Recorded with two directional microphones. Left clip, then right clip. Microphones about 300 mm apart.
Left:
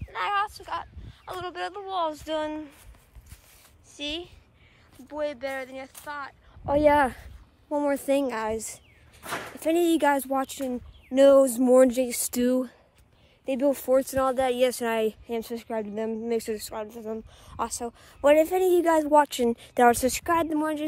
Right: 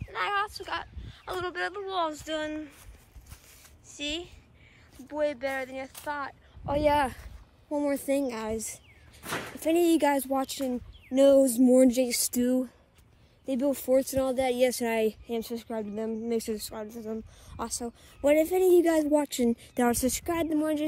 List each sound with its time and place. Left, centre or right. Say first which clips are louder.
0.1 s speech: left 2 dB; centre
3.9 s a woman's voice: left 1 dB; centre
6.6 s speech: left 5 dB; left
7.7 s speech: left 3 dB; centre
12.3 s speech: left 3 dB; left
18.4 s speech: even; centre
18.9 s speech: left 5 dB; centre
20.3 s speech: left 2 dB; centre